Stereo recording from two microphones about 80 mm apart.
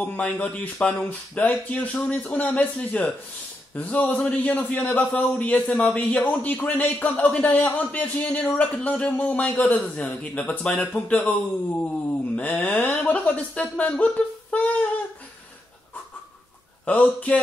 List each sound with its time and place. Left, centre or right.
0.0 s a man's voice: centre
16.8 s a man's voice: centre